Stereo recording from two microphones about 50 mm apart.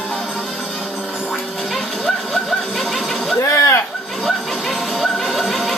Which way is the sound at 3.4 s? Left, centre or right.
Left.